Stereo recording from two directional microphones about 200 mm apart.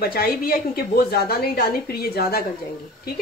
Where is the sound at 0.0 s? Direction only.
50° left (ahead or behind).